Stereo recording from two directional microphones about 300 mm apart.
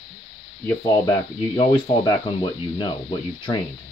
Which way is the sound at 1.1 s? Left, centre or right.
Centre.